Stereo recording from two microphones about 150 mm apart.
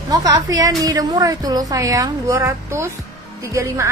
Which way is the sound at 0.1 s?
25° right (ahead or behind).